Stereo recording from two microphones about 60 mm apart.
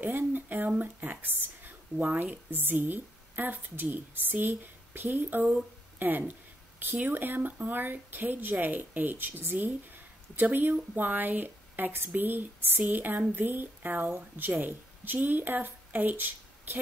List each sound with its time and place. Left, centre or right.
0.0 s speech: right